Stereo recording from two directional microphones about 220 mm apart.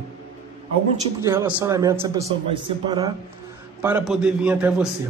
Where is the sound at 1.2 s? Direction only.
10° right (ahead or behind).